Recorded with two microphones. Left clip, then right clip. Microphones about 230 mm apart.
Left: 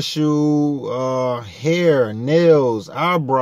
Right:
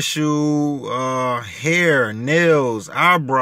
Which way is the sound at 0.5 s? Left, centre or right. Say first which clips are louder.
Left 2 dB; right.